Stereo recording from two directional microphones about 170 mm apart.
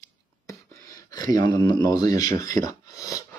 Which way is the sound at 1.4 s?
25° left (ahead or behind).